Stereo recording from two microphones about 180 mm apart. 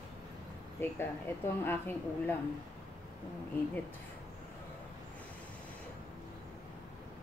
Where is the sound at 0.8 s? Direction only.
10° left (ahead or behind).